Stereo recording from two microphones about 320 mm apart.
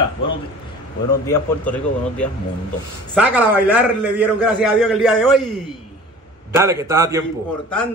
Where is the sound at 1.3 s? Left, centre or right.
Centre.